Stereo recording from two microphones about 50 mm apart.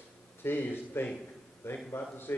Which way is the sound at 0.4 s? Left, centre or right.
Left.